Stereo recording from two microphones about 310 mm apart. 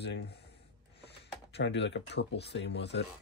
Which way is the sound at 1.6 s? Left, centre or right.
Left.